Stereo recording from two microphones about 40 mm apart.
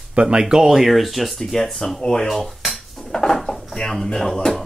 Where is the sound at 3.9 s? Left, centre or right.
Centre.